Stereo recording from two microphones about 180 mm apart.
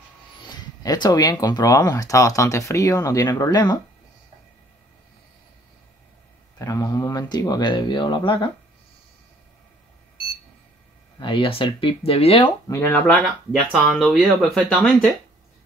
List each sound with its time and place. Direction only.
0.8 s speech: 20° left (ahead or behind)
6.6 s speech: 20° left (ahead or behind)
11.1 s speech: 25° left (ahead or behind)
13.1 s speech: centre (ahead or behind)